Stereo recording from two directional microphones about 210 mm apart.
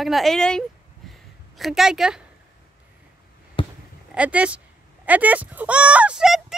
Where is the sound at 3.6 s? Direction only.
25° left (ahead or behind).